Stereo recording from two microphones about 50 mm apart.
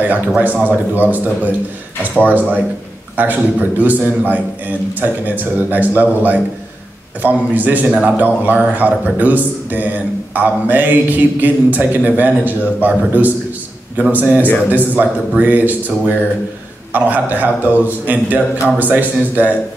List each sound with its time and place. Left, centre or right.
0.7 s a man's voice: right